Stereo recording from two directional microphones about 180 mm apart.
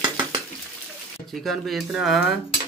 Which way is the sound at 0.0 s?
20° right (ahead or behind).